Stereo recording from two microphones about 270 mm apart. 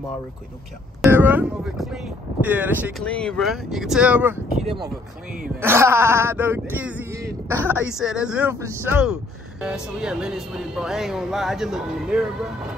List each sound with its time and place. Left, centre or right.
1.0 s speech: centre
4.6 s speech: centre